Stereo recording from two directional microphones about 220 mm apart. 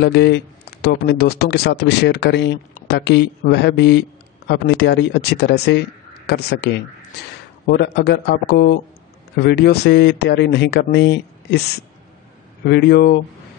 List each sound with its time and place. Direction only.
0.0 s speech: 50° left (ahead or behind)
12.6 s speech: 50° left (ahead or behind)